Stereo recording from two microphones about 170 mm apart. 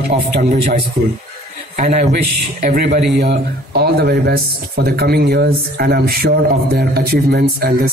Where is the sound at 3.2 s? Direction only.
75° right (ahead or behind).